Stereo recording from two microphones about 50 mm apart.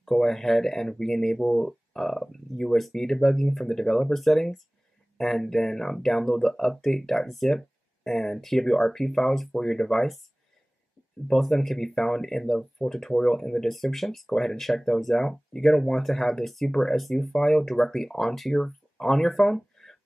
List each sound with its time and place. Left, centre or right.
0.0 s speech: centre
11.2 s speech: centre